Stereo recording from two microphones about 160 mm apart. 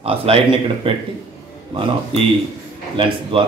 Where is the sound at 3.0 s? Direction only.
35° right (ahead or behind).